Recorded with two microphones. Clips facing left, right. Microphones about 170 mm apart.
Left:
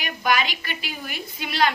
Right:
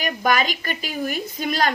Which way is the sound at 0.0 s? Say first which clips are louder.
Right 3 dB; 45° right (ahead or behind).